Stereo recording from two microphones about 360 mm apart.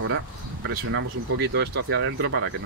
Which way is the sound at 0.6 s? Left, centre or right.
Right.